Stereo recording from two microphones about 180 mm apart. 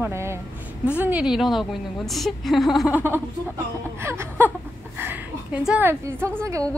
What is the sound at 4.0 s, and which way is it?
A woman's voice, 15° right (ahead or behind).